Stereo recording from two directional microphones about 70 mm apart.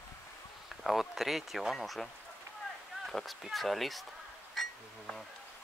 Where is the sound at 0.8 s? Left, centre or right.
Centre.